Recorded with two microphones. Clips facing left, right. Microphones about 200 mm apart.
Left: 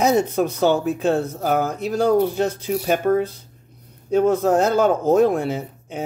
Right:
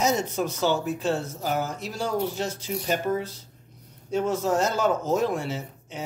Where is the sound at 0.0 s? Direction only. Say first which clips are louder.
Left 7 dB; 60° left (ahead or behind).